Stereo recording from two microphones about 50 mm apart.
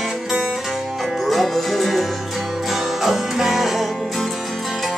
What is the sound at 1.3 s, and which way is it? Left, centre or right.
Music, centre.